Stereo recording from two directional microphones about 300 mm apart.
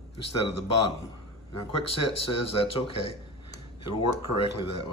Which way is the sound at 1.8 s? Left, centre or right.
Left.